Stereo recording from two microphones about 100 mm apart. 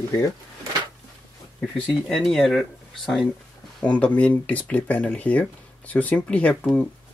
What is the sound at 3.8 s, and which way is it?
Speech, 10° left (ahead or behind).